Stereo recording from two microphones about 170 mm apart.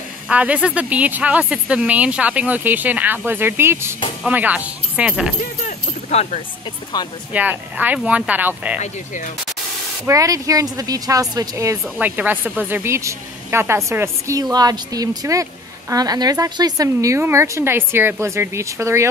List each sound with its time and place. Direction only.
0.3 s a woman's voice: 10° right (ahead or behind)
5.7 s speech: 45° left (ahead or behind)
7.3 s a woman's voice: 10° right (ahead or behind)
8.7 s speech: 45° left (ahead or behind)
10.0 s a woman's voice: 20° right (ahead or behind)